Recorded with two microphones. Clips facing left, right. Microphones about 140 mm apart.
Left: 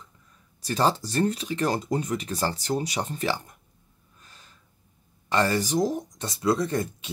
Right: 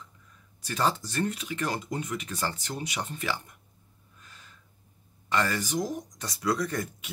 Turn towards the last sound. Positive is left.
turn(degrees=25)  # may be behind; listen again after turning